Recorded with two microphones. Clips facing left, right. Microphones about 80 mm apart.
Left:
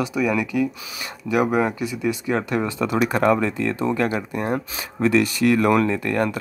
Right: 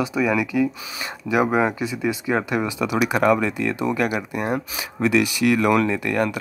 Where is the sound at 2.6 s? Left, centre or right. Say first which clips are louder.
Left 1 dB; centre.